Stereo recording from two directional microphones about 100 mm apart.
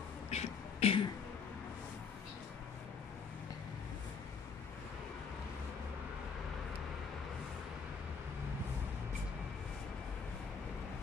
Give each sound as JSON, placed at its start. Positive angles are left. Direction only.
{"t": 0.3, "sound": "beatboxing", "side_deg": 85}